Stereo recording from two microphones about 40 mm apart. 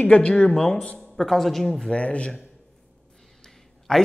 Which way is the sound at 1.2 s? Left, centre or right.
Centre.